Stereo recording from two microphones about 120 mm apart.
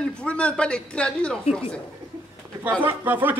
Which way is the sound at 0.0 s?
10° left (ahead or behind).